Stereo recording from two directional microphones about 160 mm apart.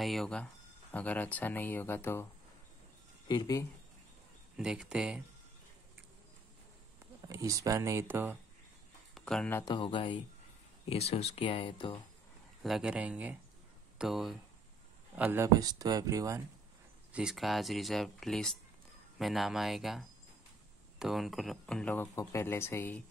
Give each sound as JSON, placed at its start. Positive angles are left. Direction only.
{"t": 0.0, "sound": "speech", "side_deg": 0}
{"t": 3.3, "sound": "speech", "side_deg": 25}
{"t": 4.6, "sound": "speech", "side_deg": -5}
{"t": 7.2, "sound": "speech", "side_deg": -20}
{"t": 9.1, "sound": "speech", "side_deg": 5}
{"t": 9.7, "sound": "speech", "side_deg": 30}
{"t": 10.9, "sound": "speech", "side_deg": 40}
{"t": 12.6, "sound": "speech", "side_deg": -5}
{"t": 15.1, "sound": "speech", "side_deg": -10}
{"t": 17.1, "sound": "speech", "side_deg": -5}